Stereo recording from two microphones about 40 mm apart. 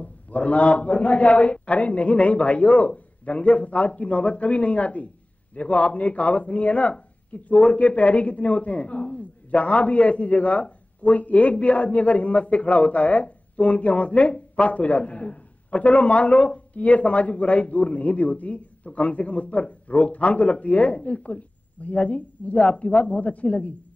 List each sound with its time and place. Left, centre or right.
0.0 s a man's voice: left